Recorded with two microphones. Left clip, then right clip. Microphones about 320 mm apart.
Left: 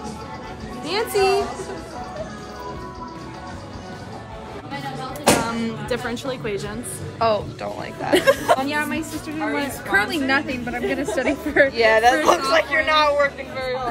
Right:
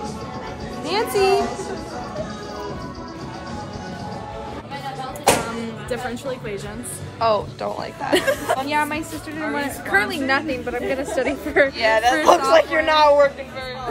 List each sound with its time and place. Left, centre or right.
0.8 s music: centre
5.6 s speech: centre
7.2 s a woman's voice: centre
8.6 s a woman's voice: right
11.7 s a woman's voice: centre